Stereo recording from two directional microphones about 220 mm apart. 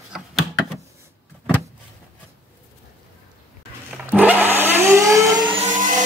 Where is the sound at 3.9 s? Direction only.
5° right (ahead or behind).